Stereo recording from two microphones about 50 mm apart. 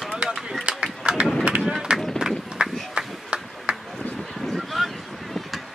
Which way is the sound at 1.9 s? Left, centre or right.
Centre.